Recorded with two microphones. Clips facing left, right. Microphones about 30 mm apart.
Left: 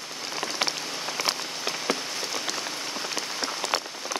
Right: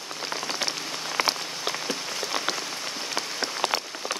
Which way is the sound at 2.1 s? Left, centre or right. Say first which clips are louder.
Right 2 dB; right.